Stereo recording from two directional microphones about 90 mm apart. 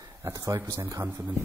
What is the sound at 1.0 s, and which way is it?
Speech, 20° right (ahead or behind).